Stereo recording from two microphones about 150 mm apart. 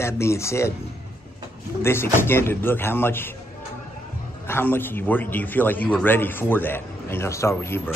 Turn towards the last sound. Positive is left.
turn(degrees=15)  # may be behind; listen again after turning